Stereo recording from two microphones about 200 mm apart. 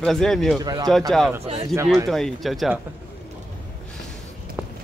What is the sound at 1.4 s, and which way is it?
Speech, 30° right (ahead or behind).